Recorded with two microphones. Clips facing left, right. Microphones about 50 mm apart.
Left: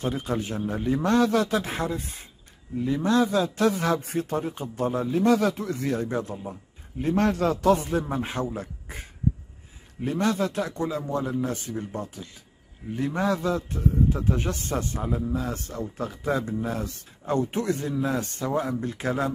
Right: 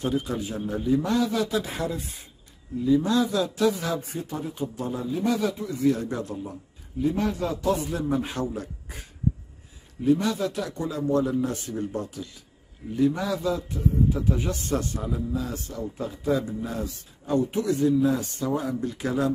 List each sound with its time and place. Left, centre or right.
0.0 s a man's voice: left
4.0 s speech: left
4.3 s speech: left
5.1 s a man's voice: left
5.8 s a man's voice: left
7.0 s a man's voice: left
7.7 s speech: left
8.1 s speech: left
10.0 s a man's voice: left
12.9 s a man's voice: left